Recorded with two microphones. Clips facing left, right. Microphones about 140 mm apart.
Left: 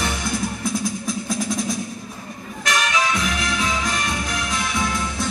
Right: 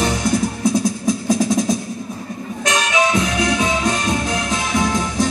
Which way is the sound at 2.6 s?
20° right (ahead or behind).